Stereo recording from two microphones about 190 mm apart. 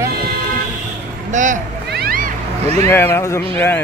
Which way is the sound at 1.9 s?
50° right (ahead or behind).